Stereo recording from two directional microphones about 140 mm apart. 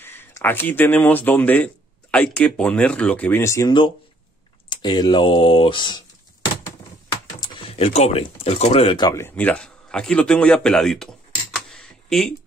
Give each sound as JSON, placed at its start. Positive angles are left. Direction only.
{"t": 0.0, "sound": "speech", "side_deg": 15}
{"t": 4.6, "sound": "speech", "side_deg": 30}
{"t": 7.3, "sound": "a sound", "side_deg": 30}
{"t": 7.7, "sound": "speech", "side_deg": 50}
{"t": 9.1, "sound": "a man's voice", "side_deg": 15}